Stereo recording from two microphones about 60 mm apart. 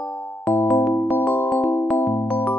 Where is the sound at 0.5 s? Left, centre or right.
Centre.